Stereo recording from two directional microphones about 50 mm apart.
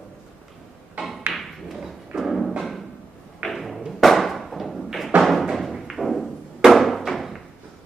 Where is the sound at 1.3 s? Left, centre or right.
Centre.